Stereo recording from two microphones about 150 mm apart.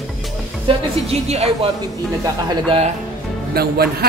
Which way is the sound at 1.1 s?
45° right (ahead or behind).